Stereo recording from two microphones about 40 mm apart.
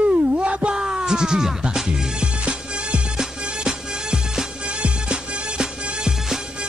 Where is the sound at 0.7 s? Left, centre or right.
Centre.